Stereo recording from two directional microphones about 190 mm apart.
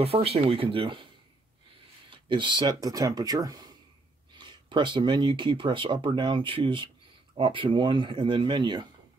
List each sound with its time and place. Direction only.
0.0 s speech: 30° right (ahead or behind)